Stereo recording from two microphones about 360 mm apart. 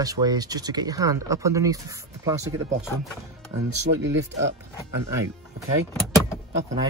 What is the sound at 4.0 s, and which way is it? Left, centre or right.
Speech, right.